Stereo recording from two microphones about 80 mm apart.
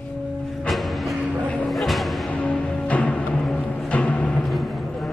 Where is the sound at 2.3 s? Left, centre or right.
Centre.